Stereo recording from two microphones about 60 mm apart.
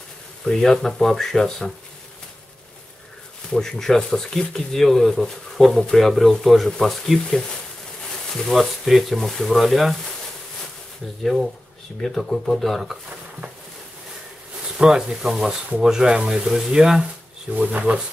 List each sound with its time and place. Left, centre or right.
0.5 s speech: centre
3.5 s speech: centre
8.5 s speech: centre
11.2 s speech: centre
14.8 s speech: centre
17.6 s speech: right